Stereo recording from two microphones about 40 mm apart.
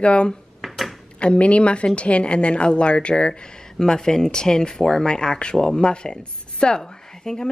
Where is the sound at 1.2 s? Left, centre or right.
Left.